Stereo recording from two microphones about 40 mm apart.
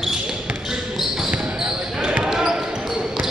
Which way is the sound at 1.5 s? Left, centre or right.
Centre.